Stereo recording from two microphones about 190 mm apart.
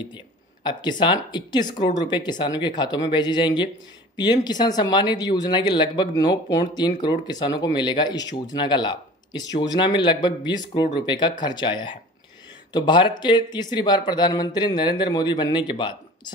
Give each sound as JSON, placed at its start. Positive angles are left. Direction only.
{"t": 0.7, "sound": "speech", "side_deg": 25}